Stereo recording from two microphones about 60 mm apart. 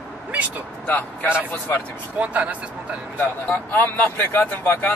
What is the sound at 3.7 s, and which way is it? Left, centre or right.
Speech, left.